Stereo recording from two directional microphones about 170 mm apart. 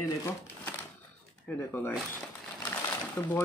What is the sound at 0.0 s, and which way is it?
Speech, 20° left (ahead or behind).